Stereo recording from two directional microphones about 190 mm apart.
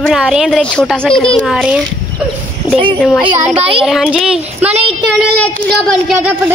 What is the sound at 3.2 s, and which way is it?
Speech, 30° right (ahead or behind).